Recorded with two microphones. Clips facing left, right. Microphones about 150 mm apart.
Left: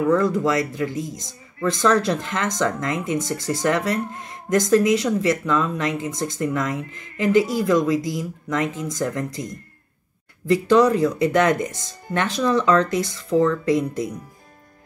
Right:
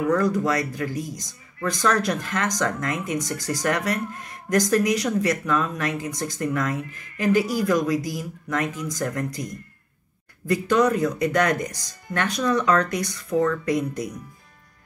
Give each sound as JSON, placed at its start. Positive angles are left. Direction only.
{"t": 0.0, "sound": "speech", "side_deg": 25}